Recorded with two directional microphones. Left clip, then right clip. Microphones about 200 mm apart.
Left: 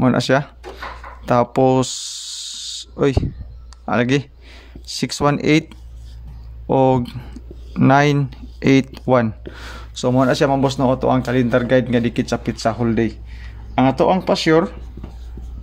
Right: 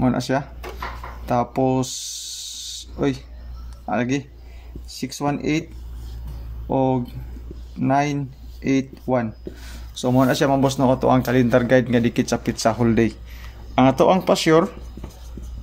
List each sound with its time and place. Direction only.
0.0 s speech: 35° left (ahead or behind)
1.2 s snake: 35° left (ahead or behind)
3.8 s speech: 35° left (ahead or behind)
6.7 s speech: 40° left (ahead or behind)
10.0 s a man's voice: 20° left (ahead or behind); by 14.8 s 5° left (ahead or behind)